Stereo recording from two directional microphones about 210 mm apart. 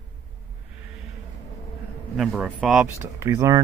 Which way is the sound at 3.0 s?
15° right (ahead or behind).